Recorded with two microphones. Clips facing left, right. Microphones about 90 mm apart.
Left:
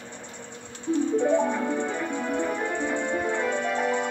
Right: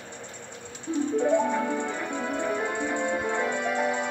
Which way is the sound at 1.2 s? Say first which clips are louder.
Right 2 dB; 5° left (ahead or behind).